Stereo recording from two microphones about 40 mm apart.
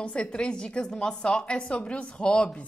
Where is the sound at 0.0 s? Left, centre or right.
Left.